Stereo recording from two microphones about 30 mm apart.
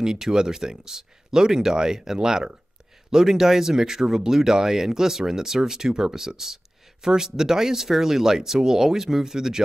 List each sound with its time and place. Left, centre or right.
0.0 s speech: right
3.2 s speech: centre